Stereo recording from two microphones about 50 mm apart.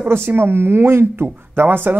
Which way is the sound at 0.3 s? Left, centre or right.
Right.